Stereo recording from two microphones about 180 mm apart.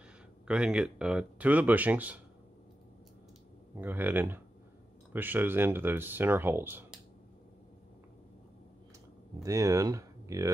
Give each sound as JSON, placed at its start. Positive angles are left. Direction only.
{"t": 0.5, "sound": "speech", "side_deg": -5}
{"t": 3.7, "sound": "speech", "side_deg": -10}
{"t": 9.4, "sound": "speech", "side_deg": -20}